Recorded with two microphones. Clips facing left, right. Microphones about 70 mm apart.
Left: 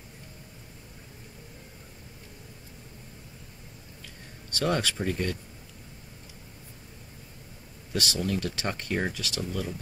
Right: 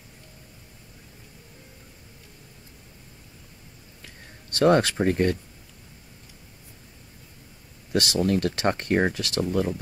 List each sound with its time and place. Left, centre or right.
4.6 s speech: right
7.9 s speech: right
8.2 s speech: right